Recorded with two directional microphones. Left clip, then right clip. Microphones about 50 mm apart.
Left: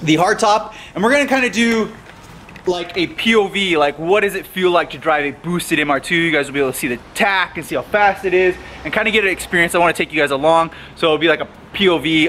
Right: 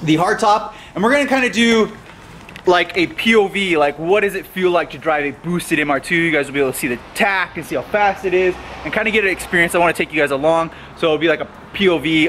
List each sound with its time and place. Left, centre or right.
0.0 s a man's voice: centre
2.6 s a man's voice: right
3.2 s speech: centre